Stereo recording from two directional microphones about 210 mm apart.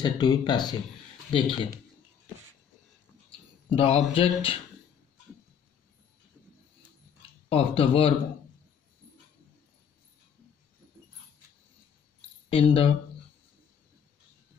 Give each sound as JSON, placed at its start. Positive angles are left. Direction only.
{"t": 0.0, "sound": "speech", "side_deg": 20}
{"t": 3.7, "sound": "speech", "side_deg": 25}
{"t": 7.4, "sound": "speech", "side_deg": 25}
{"t": 12.4, "sound": "speech", "side_deg": 25}